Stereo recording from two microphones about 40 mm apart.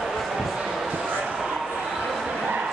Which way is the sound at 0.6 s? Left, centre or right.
Centre.